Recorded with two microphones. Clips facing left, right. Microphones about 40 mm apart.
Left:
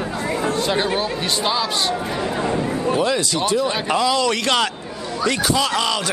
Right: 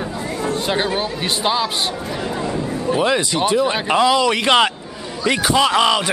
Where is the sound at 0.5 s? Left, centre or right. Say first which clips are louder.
Even; centre.